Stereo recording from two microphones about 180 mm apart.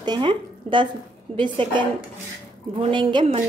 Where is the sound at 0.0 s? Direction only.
25° right (ahead or behind).